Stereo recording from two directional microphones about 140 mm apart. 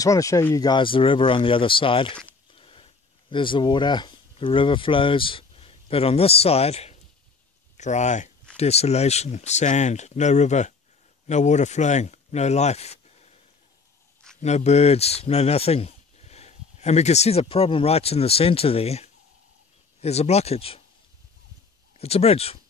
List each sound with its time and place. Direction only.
0.0 s speech: 25° left (ahead or behind)
0.7 s speech: 35° left (ahead or behind); by 13.4 s 50° left (ahead or behind)
14.4 s speech: 50° left (ahead or behind)
21.9 s speech: 45° left (ahead or behind)